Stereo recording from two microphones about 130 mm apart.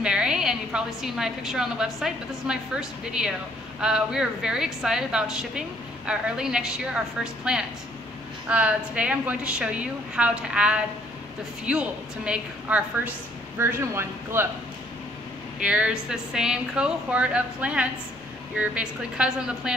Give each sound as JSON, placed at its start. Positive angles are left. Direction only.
{"t": 0.0, "sound": "a woman's voice", "side_deg": -5}
{"t": 15.6, "sound": "a woman's voice", "side_deg": -10}